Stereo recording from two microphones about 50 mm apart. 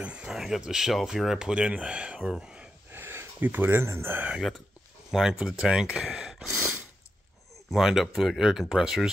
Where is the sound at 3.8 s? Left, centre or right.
Right.